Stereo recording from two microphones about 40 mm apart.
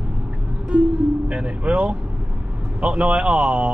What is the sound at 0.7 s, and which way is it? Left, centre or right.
Speech, right.